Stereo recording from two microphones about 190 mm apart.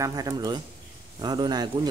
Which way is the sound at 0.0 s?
20° right (ahead or behind).